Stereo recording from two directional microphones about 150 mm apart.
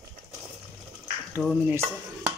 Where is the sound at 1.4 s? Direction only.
5° left (ahead or behind).